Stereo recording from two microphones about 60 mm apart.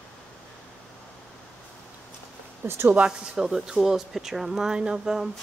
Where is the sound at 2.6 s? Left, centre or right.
Right.